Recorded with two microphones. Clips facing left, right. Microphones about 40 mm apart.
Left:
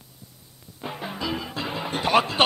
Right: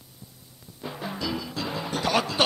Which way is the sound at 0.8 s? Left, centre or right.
Left.